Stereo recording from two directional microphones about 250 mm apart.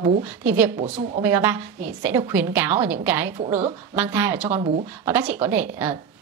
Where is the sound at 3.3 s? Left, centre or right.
Centre.